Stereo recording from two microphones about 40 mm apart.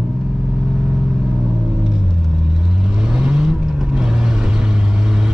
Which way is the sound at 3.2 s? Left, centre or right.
Centre.